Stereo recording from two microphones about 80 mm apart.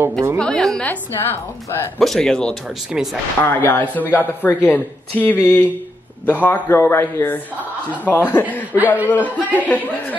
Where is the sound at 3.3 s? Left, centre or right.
Left.